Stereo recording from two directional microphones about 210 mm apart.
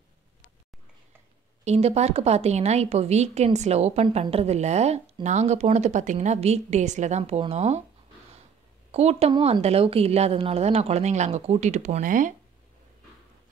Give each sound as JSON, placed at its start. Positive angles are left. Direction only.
{"t": 1.6, "sound": "speech", "side_deg": -30}
{"t": 8.9, "sound": "speech", "side_deg": -30}